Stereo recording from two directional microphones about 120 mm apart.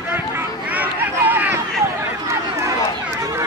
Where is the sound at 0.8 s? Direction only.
15° right (ahead or behind).